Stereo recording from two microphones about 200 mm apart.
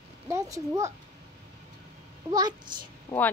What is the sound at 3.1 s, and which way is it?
Speech, 15° left (ahead or behind).